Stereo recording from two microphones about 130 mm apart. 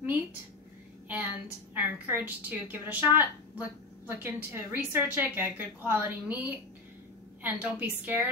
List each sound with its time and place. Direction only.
0.0 s a woman's voice: 15° right (ahead or behind)